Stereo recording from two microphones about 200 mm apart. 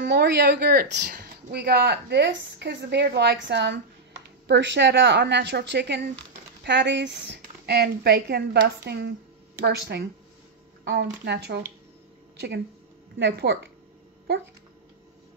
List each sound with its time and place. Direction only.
0.0 s speech: 55° right (ahead or behind)
10.8 s shuffling cards: 60° right (ahead or behind)
11.2 s speech: 55° right (ahead or behind)
13.2 s speech: 60° right (ahead or behind)